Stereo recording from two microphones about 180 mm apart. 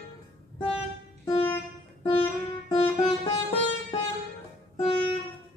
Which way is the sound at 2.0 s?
30° left (ahead or behind).